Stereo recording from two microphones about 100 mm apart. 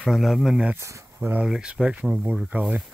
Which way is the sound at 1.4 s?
10° right (ahead or behind).